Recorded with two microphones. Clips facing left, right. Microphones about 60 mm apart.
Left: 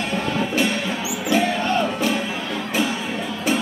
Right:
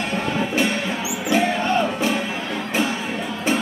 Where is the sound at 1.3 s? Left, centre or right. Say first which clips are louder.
Right 1 dB; right.